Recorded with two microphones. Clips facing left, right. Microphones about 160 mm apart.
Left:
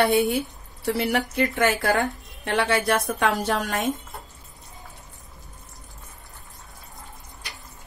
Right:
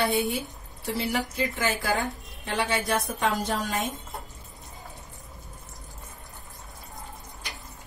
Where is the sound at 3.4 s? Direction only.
75° left (ahead or behind).